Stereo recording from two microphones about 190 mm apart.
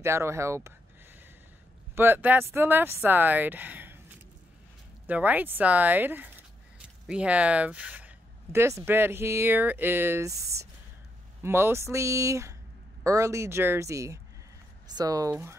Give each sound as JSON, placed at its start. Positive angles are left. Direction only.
{"t": 0.0, "sound": "speech", "side_deg": -15}
{"t": 2.0, "sound": "speech", "side_deg": -10}
{"t": 5.0, "sound": "speech", "side_deg": -10}